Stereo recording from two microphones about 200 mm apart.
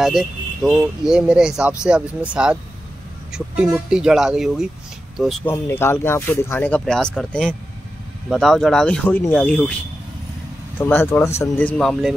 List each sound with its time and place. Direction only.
0.7 s speech: 5° right (ahead or behind)
5.5 s speech: 10° left (ahead or behind)
10.8 s speech: 10° left (ahead or behind)